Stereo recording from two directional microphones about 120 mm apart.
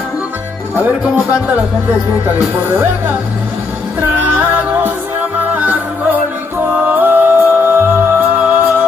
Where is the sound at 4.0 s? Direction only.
15° right (ahead or behind).